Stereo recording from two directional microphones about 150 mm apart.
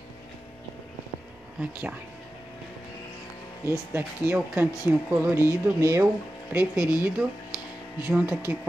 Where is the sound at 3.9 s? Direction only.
10° right (ahead or behind).